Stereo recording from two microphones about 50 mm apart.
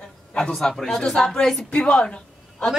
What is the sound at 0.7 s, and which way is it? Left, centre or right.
A man's voice, centre.